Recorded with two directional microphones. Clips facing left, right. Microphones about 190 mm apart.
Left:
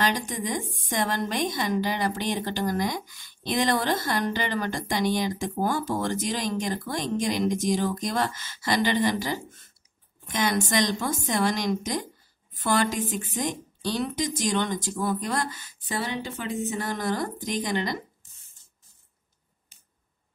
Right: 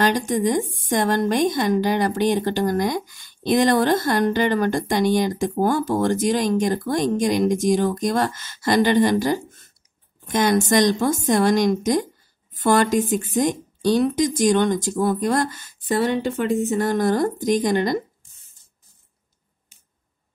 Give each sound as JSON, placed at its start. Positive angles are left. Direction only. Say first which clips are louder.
{"t": 0.0, "sound": "speech", "louder": "right 8 dB", "side_deg": -45}